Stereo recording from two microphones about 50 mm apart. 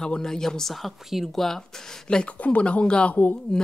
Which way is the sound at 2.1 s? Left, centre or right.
Centre.